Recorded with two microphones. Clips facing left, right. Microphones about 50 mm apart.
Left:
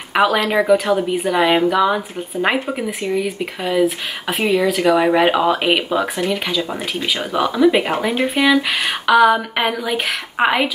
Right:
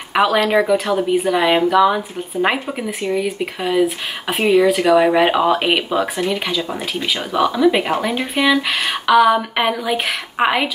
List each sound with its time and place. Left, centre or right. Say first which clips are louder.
0.1 s speech: right 1 dB; centre
7.3 s speech: even; centre